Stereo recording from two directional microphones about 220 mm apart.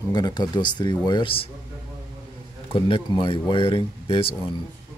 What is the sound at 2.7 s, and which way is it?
Speech, 25° left (ahead or behind).